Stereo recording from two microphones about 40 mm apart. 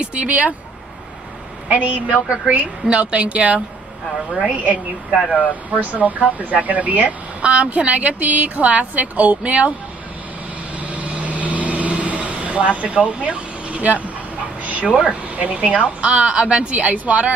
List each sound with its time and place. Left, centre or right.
0.0 s speech: right
1.7 s speech: right
5.3 s speech: left
5.7 s speech: right
10.8 s vehicle: right
15.3 s speech: right